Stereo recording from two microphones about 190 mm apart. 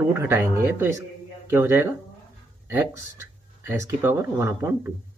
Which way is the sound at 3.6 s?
15° right (ahead or behind).